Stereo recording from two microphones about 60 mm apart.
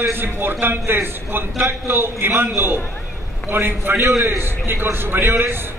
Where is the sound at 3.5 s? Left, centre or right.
Right.